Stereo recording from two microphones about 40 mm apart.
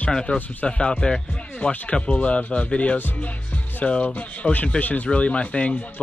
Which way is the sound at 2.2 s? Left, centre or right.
Left.